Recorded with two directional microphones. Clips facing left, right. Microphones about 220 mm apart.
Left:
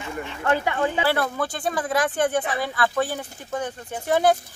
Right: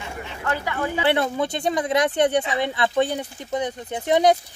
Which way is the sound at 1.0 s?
20° right (ahead or behind).